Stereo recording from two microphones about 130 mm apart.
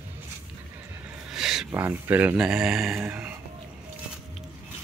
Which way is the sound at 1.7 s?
15° right (ahead or behind).